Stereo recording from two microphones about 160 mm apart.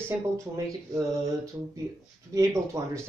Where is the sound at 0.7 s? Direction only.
20° right (ahead or behind).